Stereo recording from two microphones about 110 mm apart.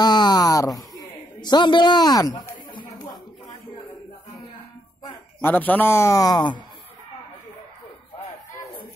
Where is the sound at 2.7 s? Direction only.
45° left (ahead or behind).